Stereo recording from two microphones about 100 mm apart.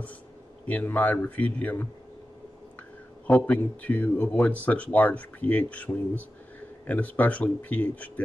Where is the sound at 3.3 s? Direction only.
15° left (ahead or behind).